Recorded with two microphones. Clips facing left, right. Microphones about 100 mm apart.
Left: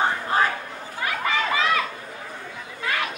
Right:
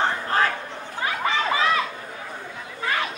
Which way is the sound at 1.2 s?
30° right (ahead or behind).